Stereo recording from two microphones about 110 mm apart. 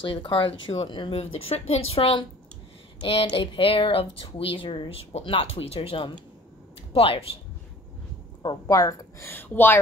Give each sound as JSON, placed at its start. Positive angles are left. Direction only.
{"t": 0.0, "sound": "speech", "side_deg": 50}
{"t": 1.1, "sound": "speech", "side_deg": 65}
{"t": 3.0, "sound": "speech", "side_deg": 55}
{"t": 8.6, "sound": "a woman's voice", "side_deg": 30}
{"t": 9.2, "sound": "speech", "side_deg": 20}